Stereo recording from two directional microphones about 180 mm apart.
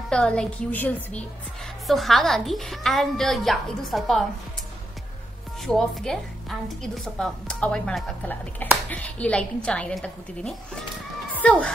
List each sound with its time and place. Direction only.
0.1 s a woman's voice: 5° left (ahead or behind)
5.7 s a woman's voice: 5° left (ahead or behind)